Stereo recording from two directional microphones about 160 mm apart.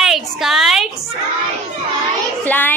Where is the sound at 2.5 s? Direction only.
10° left (ahead or behind).